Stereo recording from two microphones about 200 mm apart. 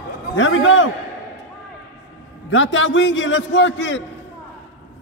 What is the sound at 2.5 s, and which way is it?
A man's voice, 70° left (ahead or behind).